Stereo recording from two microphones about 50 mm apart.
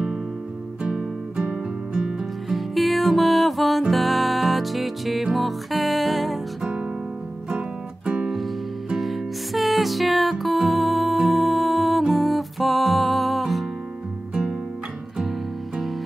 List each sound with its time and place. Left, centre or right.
0.8 s music: centre
2.5 s music: centre
7.4 s music: centre
8.9 s music: centre